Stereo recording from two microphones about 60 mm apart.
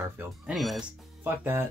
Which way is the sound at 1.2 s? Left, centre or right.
Right.